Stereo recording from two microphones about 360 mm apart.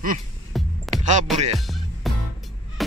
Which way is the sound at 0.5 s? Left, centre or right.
Centre.